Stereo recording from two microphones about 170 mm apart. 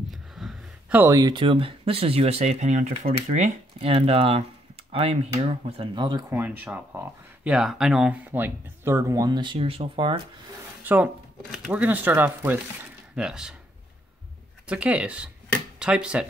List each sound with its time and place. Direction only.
0.1 s a sound: centre (ahead or behind)
1.1 s speech: 25° right (ahead or behind)
6.3 s speech: 10° right (ahead or behind); by 10.2 s 30° right (ahead or behind)
10.8 s drawer open or close: 10° right (ahead or behind)
11.5 s speech: 5° right (ahead or behind)
14.7 s speech: 5° right (ahead or behind)